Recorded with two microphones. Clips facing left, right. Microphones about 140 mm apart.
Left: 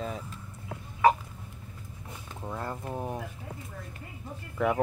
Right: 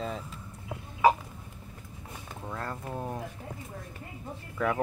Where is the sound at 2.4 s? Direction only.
15° left (ahead or behind).